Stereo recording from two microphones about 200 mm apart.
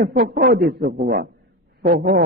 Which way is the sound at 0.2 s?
50° right (ahead or behind).